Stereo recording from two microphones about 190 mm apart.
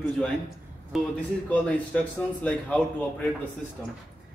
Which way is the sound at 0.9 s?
Centre (ahead or behind).